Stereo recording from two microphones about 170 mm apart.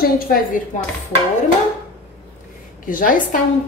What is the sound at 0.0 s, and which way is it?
Speech, 60° left (ahead or behind).